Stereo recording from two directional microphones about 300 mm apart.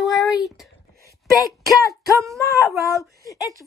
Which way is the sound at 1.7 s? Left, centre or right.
Centre.